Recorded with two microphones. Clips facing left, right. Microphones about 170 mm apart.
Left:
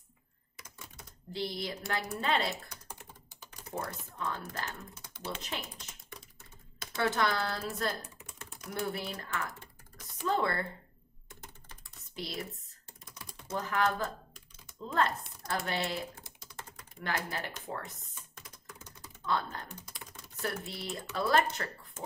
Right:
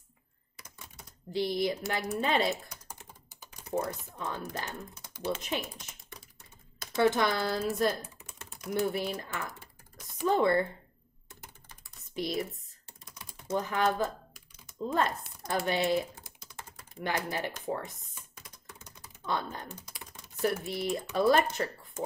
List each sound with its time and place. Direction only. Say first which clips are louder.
1.3 s speech: right 7 dB; 15° right (ahead or behind)
7.0 s speech: right 4 dB; 15° right (ahead or behind)
11.4 s typing: left 1 dB; 15° right (ahead or behind)
13.5 s speech: right 3 dB; 20° right (ahead or behind)